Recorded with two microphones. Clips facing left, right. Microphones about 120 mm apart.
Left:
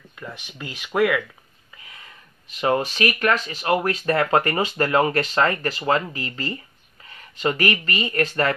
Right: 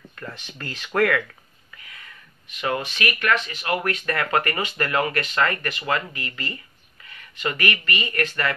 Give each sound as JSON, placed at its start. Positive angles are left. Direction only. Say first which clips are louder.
{"t": 0.1, "sound": "speech", "louder": "left 1 dB", "side_deg": 10}
{"t": 1.8, "sound": "a sound", "louder": "left 1 dB", "side_deg": 25}
{"t": 2.6, "sound": "speech", "louder": "left 5 dB", "side_deg": 35}